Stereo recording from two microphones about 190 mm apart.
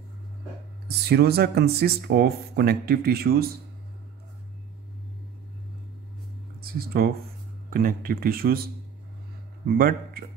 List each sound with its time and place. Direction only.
0.8 s speech: 60° right (ahead or behind)
6.6 s speech: 50° right (ahead or behind)
9.8 s speech: 50° right (ahead or behind)